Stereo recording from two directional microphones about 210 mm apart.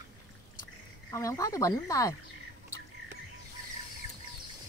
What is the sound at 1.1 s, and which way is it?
Speech, 15° left (ahead or behind).